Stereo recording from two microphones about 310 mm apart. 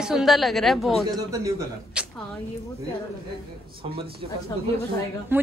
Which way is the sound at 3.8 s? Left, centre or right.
Centre.